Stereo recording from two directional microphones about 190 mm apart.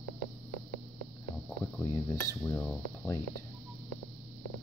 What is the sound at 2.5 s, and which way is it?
Speech, 5° left (ahead or behind).